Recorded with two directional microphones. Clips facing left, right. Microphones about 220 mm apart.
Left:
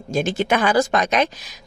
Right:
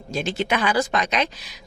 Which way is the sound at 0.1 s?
50° left (ahead or behind).